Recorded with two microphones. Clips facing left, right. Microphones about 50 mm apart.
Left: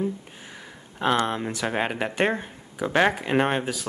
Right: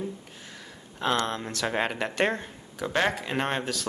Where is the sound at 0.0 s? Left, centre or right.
Centre.